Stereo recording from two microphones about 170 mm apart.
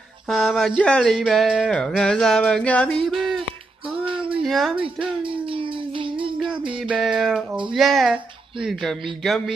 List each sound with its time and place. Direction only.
0.3 s speech: centre (ahead or behind)
4.3 s a sound: centre (ahead or behind)
5.0 s music: 30° right (ahead or behind)
6.9 s speech: 5° right (ahead or behind)